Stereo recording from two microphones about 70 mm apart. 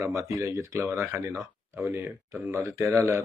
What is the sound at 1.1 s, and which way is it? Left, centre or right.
Speech, right.